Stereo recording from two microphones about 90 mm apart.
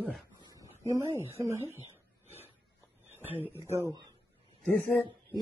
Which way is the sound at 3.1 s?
20° right (ahead or behind).